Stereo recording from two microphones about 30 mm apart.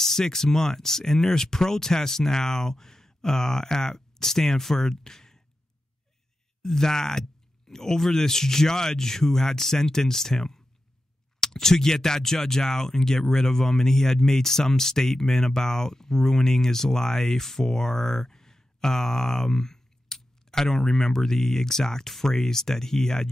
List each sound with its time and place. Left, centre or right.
0.0 s speech: centre
6.6 s speech: centre